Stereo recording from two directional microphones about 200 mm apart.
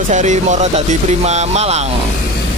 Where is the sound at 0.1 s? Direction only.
35° right (ahead or behind).